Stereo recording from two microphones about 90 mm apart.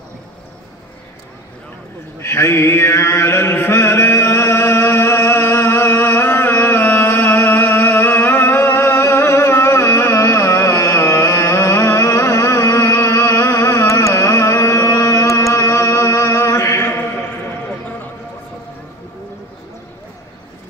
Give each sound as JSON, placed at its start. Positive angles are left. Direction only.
{"t": 2.1, "sound": "chant", "side_deg": 30}